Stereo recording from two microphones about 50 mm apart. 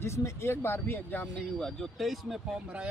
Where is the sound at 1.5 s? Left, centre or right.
Centre.